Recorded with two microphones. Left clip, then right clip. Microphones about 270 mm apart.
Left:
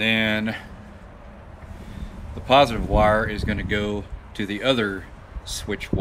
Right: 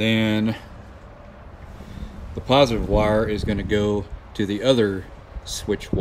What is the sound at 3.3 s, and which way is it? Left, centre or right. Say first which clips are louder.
Speech: right 3 dB; centre.